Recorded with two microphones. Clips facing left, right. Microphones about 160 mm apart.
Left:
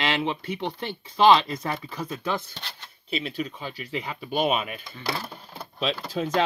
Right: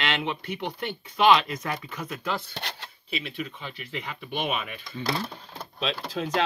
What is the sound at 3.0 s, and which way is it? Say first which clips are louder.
Speech: left 4 dB; 35° left (ahead or behind).